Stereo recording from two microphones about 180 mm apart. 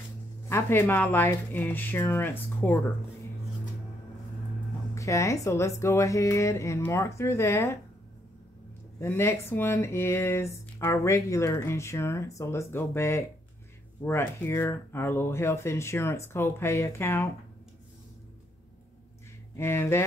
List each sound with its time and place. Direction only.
0.5 s speech: 15° left (ahead or behind)
4.9 s speech: 15° left (ahead or behind)
9.0 s speech: 15° left (ahead or behind)
19.5 s speech: 15° left (ahead or behind)